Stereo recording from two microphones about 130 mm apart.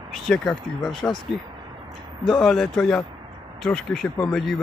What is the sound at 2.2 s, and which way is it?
Speech, 5° left (ahead or behind).